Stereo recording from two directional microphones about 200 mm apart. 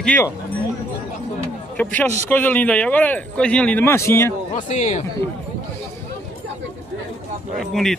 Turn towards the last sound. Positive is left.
turn(degrees=0)  # may be behind; listen again after turning